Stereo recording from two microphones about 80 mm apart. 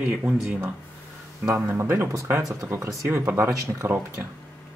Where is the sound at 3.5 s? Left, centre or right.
Right.